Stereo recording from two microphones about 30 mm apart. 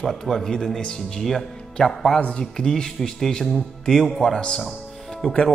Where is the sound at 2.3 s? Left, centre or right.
Left.